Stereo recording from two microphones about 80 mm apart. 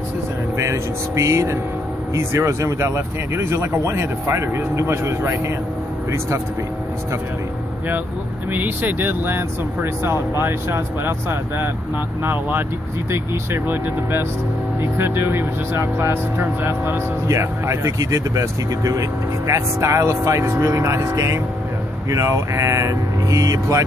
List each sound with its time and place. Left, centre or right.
0.6 s speech: right
8.5 s speech: right